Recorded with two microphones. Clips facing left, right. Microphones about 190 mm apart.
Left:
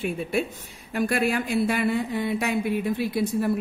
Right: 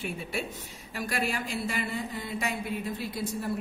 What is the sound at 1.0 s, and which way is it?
Speech, 60° left (ahead or behind).